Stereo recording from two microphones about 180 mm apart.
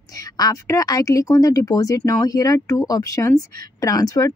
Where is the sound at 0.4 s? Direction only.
20° left (ahead or behind).